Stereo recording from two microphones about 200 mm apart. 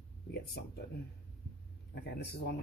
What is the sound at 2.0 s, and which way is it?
Speech, 55° left (ahead or behind).